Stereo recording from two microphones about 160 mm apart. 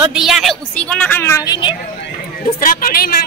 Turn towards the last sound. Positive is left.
turn(degrees=65)  # may be behind; listen again after turning